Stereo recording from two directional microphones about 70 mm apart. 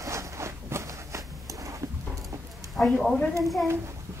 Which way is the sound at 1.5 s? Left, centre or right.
Right.